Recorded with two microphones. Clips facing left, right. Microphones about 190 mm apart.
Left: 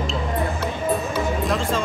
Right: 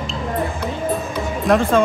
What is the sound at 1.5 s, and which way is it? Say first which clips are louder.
Speech: right 7 dB; 55° right (ahead or behind).